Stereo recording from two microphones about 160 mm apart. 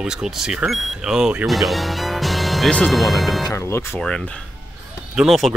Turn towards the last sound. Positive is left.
turn(degrees=0)  # may be behind; listen again after turning